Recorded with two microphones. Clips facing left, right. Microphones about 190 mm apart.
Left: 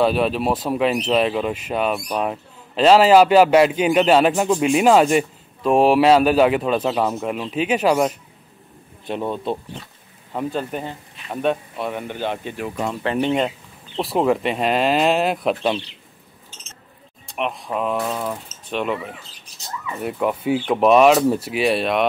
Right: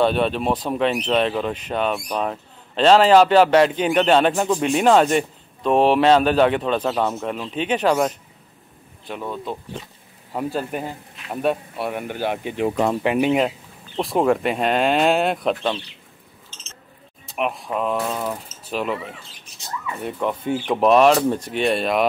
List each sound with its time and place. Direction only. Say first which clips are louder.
0.0 s speech: left 1 dB; 5° left (ahead or behind)
9.0 s speech: left 5 dB; 25° left (ahead or behind)
10.3 s a man's voice: even; 5° right (ahead or behind)
13.9 s speech: even; centre (ahead or behind)
17.3 s speech: right 1 dB; centre (ahead or behind)